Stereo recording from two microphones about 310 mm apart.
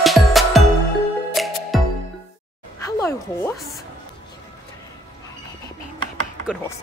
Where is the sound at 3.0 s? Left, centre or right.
Centre.